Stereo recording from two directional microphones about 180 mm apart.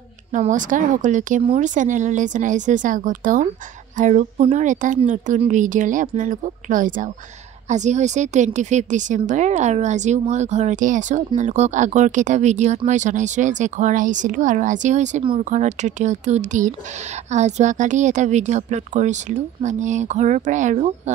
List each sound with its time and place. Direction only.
0.3 s a woman's voice: 45° right (ahead or behind)